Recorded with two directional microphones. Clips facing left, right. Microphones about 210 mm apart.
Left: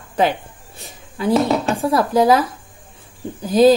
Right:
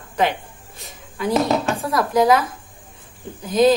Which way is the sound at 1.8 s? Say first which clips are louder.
Left 3 dB; 30° left (ahead or behind).